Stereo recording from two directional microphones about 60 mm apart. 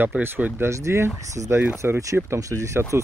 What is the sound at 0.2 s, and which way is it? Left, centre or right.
Speech, right.